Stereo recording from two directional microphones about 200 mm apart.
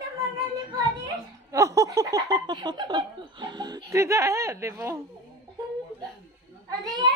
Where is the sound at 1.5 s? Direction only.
15° right (ahead or behind).